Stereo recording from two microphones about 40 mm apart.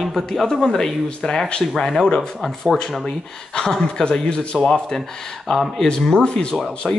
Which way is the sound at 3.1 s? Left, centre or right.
Centre.